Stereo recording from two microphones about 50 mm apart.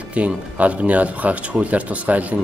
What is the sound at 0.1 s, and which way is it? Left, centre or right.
Speech, right.